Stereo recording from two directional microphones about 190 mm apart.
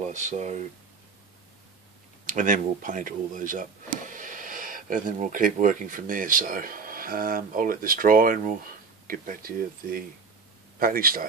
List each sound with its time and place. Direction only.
0.0 s speech: 40° right (ahead or behind)
2.2 s speech: 45° right (ahead or behind)